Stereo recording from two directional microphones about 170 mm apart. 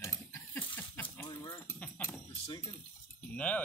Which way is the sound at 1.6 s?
15° left (ahead or behind).